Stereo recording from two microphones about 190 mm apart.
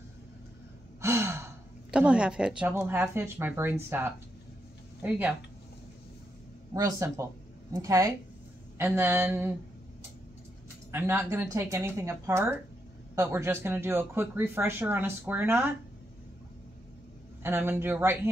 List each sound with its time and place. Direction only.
1.0 s speech: 15° right (ahead or behind)
6.7 s speech: 15° right (ahead or behind)
10.9 s speech: 10° right (ahead or behind)
17.4 s speech: 10° right (ahead or behind)